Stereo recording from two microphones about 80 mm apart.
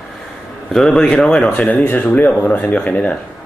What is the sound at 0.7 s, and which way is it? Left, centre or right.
Speech, centre.